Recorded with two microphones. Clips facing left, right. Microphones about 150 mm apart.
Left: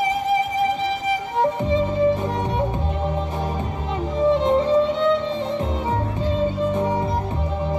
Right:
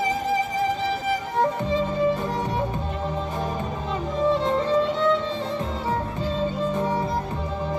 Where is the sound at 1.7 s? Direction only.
20° left (ahead or behind).